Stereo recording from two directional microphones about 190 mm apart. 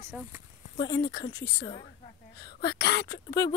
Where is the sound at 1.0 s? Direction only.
65° left (ahead or behind).